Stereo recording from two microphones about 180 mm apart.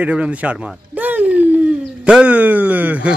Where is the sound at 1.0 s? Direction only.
10° right (ahead or behind).